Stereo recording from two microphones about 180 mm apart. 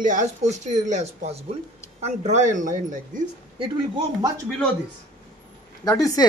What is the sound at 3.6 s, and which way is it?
Speech, 25° right (ahead or behind).